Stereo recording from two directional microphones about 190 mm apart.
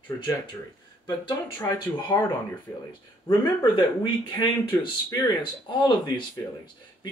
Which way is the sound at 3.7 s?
25° left (ahead or behind).